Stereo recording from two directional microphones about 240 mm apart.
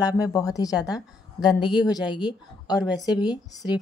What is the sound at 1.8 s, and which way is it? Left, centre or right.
A woman's voice, centre.